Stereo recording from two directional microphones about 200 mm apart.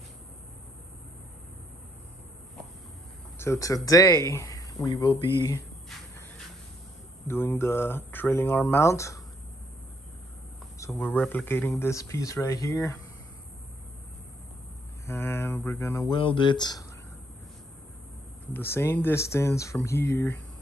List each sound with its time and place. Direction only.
3.3 s speech: 15° left (ahead or behind)
7.2 s speech: 10° left (ahead or behind)
10.9 s speech: 5° left (ahead or behind)
15.0 s speech: 10° left (ahead or behind)
18.5 s speech: 10° left (ahead or behind)